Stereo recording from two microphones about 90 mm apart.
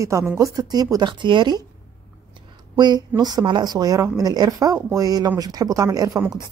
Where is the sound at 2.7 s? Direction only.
50° right (ahead or behind).